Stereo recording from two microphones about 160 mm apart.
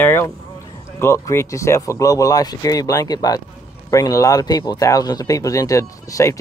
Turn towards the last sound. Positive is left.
turn(degrees=20)  # may be behind; listen again after turning